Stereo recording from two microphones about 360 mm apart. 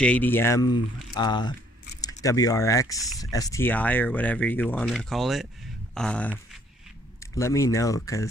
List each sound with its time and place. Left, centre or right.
0.0 s speech: centre